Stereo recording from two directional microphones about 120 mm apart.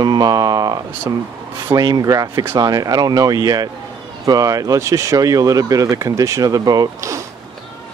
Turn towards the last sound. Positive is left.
turn(degrees=-25)  # may be behind; listen again after turning